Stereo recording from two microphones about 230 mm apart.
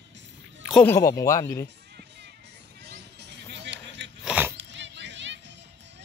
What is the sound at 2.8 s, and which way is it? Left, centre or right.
Music, right.